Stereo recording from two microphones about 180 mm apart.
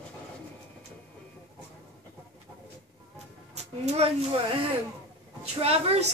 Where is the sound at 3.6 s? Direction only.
35° right (ahead or behind).